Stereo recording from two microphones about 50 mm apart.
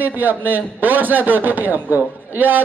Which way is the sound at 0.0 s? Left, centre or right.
Right.